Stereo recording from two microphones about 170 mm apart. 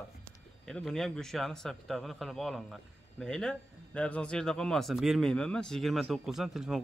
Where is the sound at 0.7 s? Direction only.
5° left (ahead or behind).